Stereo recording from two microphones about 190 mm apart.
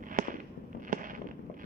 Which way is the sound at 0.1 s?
45° right (ahead or behind).